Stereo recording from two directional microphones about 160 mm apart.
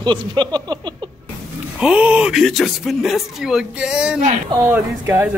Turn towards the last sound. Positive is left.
turn(degrees=-20)  # may be behind; listen again after turning